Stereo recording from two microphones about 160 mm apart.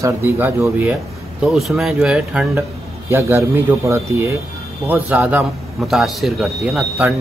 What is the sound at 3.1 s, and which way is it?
A man's voice, 15° right (ahead or behind).